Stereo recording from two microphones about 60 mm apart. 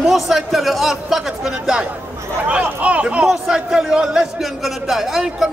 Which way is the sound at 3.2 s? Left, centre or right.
Centre.